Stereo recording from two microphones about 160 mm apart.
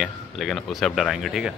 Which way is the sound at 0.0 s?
Centre (ahead or behind).